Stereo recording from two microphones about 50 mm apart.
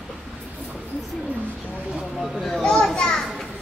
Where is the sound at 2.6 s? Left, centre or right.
Centre.